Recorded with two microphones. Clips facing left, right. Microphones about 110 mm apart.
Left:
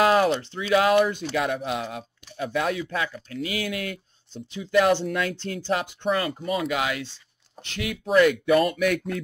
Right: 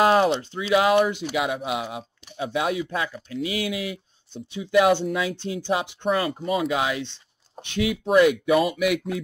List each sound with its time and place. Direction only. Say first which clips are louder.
0.0 s speech: right 1 dB; 25° right (ahead or behind)
8.5 s speech: even; 5° right (ahead or behind)